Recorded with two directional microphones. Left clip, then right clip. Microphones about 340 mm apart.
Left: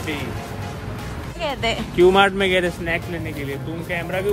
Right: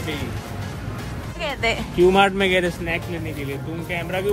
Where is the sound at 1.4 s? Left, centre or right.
Centre.